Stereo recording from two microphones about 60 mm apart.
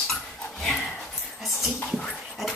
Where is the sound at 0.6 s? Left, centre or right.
Centre.